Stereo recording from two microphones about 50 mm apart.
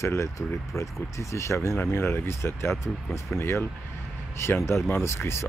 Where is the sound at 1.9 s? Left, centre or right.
Left.